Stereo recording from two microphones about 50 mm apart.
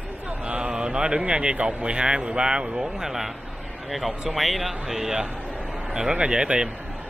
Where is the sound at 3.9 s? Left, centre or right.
Centre.